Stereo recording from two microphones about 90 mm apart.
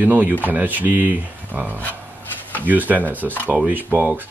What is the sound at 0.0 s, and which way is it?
Speech, 15° right (ahead or behind).